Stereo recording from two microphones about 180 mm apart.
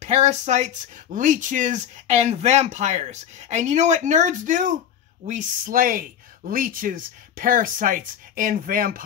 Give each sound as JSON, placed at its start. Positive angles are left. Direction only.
{"t": 0.0, "sound": "speech", "side_deg": -40}